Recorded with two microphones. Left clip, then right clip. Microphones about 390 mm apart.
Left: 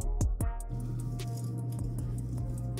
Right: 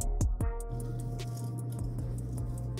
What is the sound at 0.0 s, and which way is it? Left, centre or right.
Music, centre.